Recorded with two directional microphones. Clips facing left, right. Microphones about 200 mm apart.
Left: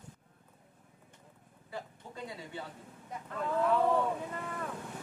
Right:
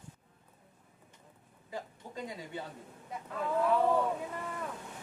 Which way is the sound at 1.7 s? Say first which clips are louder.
Right 2 dB; 15° right (ahead or behind).